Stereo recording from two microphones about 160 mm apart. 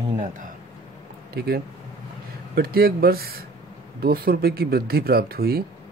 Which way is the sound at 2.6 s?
70° right (ahead or behind).